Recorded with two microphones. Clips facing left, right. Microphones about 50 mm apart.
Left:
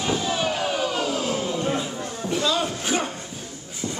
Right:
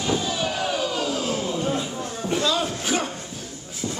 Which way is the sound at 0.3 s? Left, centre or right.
Left.